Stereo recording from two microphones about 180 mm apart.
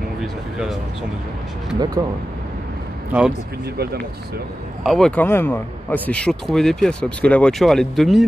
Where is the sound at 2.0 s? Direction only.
25° right (ahead or behind).